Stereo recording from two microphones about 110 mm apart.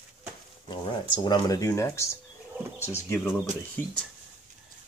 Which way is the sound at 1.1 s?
40° left (ahead or behind).